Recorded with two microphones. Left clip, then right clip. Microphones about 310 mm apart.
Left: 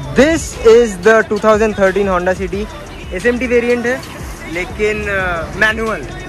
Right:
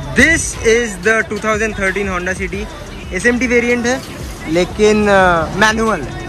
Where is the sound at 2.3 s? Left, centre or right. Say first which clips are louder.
Left 2 dB; left.